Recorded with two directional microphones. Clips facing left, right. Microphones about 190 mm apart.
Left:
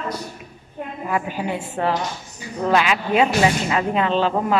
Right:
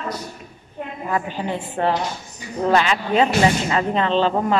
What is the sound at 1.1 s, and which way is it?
A woman's voice, 10° left (ahead or behind).